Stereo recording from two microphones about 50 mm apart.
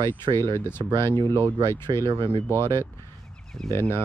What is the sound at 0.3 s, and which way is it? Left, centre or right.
Speech, left.